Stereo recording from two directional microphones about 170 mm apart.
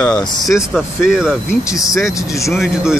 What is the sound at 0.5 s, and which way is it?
Speech, 5° right (ahead or behind).